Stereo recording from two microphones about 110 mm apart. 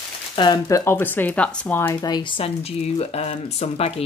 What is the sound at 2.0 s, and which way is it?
Speech, 40° left (ahead or behind).